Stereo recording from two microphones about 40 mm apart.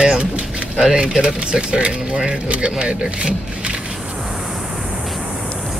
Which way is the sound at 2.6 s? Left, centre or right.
Right.